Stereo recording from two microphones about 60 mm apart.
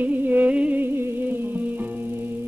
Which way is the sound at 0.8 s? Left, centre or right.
Right.